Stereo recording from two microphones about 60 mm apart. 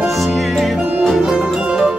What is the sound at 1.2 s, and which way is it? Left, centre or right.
Music, centre.